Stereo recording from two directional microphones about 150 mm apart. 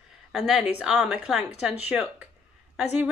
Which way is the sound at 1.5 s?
45° left (ahead or behind).